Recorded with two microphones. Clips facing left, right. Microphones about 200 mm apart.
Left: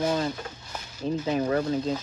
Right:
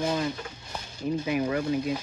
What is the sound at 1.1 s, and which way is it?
Speech, 10° right (ahead or behind).